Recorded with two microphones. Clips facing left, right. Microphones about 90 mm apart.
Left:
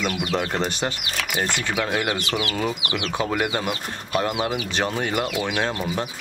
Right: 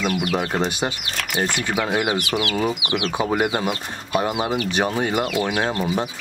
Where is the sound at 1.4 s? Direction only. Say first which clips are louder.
Right 3 dB; 10° right (ahead or behind).